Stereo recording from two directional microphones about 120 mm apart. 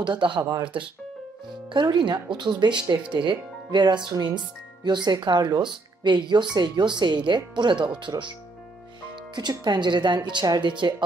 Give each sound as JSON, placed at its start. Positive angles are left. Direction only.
{"t": 0.0, "sound": "speech", "side_deg": -40}